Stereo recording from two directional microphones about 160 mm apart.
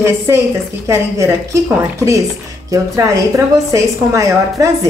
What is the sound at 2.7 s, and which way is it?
A woman's voice, 20° right (ahead or behind).